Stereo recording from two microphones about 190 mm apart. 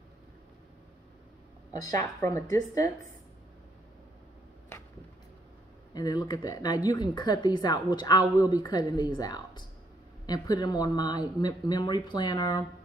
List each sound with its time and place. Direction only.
1.7 s a woman's voice: 15° left (ahead or behind)
5.9 s a woman's voice: 20° left (ahead or behind)